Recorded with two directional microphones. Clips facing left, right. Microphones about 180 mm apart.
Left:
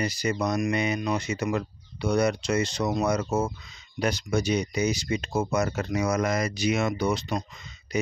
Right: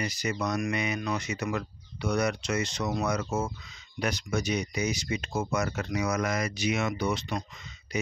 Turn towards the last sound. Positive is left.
turn(degrees=40)  # may be behind; listen again after turning